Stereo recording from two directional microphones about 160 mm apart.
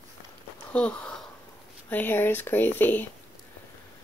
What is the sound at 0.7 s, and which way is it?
Speech, 5° left (ahead or behind).